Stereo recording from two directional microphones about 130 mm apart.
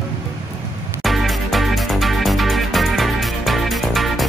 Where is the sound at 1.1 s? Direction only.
Centre (ahead or behind).